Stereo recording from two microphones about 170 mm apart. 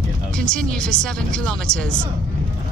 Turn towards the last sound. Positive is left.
turn(degrees=5)  # may be behind; listen again after turning